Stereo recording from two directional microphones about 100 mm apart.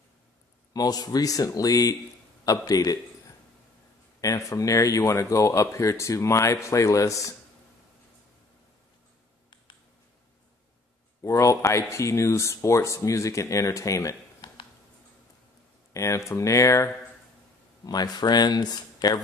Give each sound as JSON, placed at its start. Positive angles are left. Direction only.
{"t": 0.7, "sound": "speech", "side_deg": 40}
{"t": 4.2, "sound": "speech", "side_deg": 35}
{"t": 11.2, "sound": "speech", "side_deg": 30}
{"t": 14.4, "sound": "a sound", "side_deg": 55}
{"t": 15.9, "sound": "speech", "side_deg": 30}
{"t": 17.8, "sound": "speech", "side_deg": 40}